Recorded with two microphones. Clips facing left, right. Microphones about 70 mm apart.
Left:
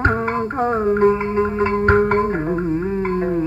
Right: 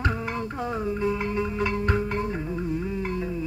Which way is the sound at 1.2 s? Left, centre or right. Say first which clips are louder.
Left 8 dB; left.